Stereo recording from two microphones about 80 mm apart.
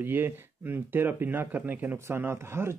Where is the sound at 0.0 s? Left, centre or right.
Right.